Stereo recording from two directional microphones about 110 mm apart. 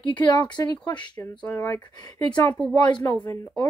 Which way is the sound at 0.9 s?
45° left (ahead or behind).